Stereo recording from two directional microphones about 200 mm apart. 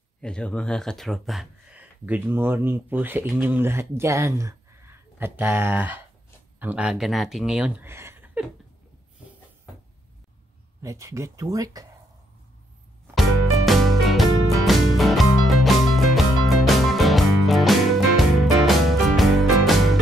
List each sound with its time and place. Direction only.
0.2 s speech: 5° left (ahead or behind); by 8.5 s 10° right (ahead or behind)
10.8 s speech: 15° right (ahead or behind)
13.1 s music: centre (ahead or behind)